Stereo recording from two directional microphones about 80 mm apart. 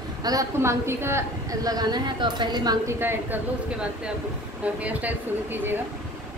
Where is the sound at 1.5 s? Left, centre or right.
Right.